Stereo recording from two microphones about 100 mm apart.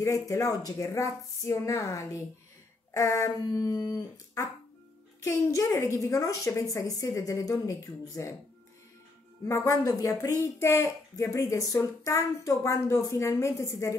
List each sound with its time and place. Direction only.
0.3 s speech: 35° left (ahead or behind)
9.5 s speech: 30° left (ahead or behind)
10.4 s speech: 25° left (ahead or behind)